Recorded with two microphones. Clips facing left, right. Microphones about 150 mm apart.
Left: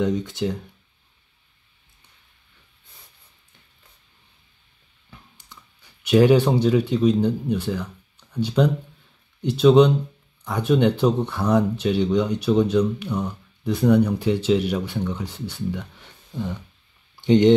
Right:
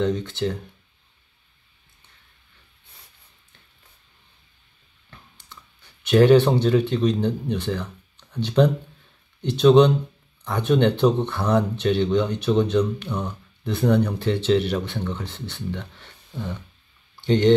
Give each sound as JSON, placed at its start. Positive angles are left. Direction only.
{"t": 0.0, "sound": "speech", "side_deg": 10}
{"t": 6.0, "sound": "speech", "side_deg": 10}
{"t": 17.1, "sound": "a sound", "side_deg": 15}